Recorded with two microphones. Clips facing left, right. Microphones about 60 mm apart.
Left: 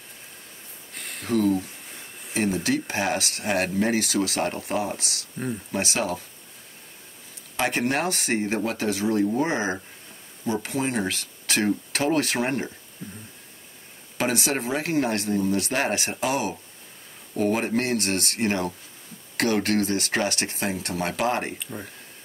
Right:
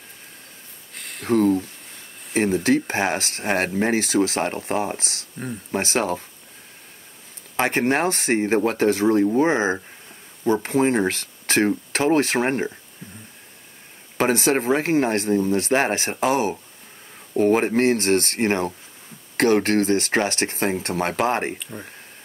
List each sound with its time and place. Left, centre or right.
0.9 s a sound: centre
1.3 s speech: right
7.5 s speech: right
10.5 s speech: right
14.1 s speech: right
21.5 s speech: centre